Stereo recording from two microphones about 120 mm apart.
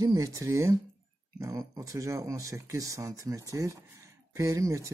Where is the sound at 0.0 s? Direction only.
30° right (ahead or behind).